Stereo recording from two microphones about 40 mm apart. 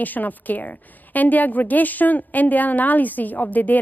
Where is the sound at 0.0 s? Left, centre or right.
Left.